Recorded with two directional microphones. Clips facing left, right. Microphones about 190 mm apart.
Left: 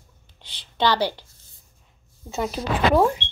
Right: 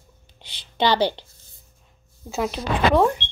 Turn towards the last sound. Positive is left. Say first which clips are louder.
# even
turn(degrees=0)  # may be behind; listen again after turning